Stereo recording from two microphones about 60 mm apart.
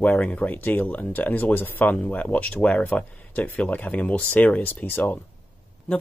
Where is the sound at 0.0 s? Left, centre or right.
Left.